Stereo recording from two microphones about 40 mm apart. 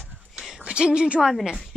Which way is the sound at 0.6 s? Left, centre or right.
Right.